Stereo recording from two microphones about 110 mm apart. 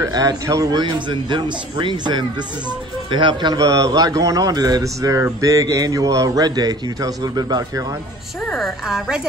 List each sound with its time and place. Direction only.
0.0 s speech: 35° right (ahead or behind)
0.7 s speech: 45° right (ahead or behind)
3.5 s speech: 30° right (ahead or behind)
8.5 s a woman's voice: centre (ahead or behind)